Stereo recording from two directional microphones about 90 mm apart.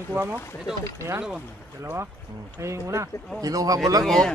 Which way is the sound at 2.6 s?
35° right (ahead or behind).